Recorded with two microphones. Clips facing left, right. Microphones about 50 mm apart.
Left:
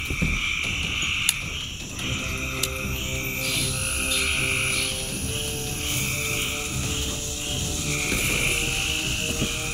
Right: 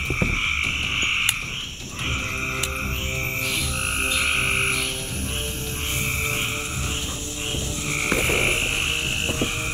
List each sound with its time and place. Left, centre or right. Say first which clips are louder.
0.1 s frog: right 3 dB; right
4.1 s frog: right 2 dB; right
7.9 s frog: right 4 dB; right